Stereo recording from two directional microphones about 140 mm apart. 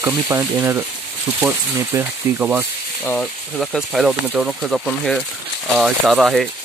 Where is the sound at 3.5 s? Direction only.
Centre (ahead or behind).